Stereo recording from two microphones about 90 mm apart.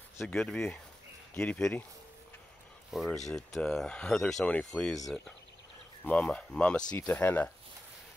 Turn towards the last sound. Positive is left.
turn(degrees=20)  # may be behind; listen again after turning